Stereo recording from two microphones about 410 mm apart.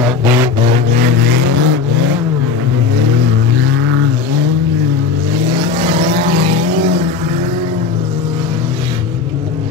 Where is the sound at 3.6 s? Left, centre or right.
Right.